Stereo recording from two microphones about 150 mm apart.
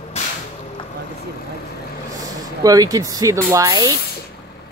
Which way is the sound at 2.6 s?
25° right (ahead or behind).